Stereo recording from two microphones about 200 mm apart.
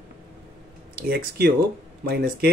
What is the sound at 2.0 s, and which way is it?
Speech, 55° right (ahead or behind).